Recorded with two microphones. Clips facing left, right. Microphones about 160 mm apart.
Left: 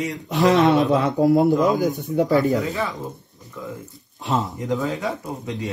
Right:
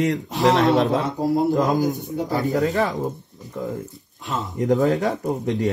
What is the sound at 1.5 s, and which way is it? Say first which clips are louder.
Speech: left 2 dB; 50° right (ahead or behind).